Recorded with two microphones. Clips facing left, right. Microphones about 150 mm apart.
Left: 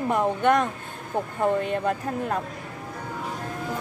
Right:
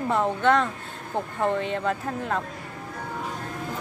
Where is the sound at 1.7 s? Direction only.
20° left (ahead or behind).